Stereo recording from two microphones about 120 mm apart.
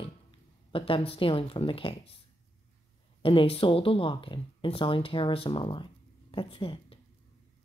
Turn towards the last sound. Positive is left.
turn(degrees=50)  # may be behind; listen again after turning